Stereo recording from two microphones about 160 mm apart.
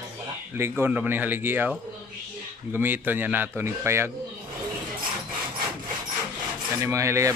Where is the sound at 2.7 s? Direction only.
10° right (ahead or behind).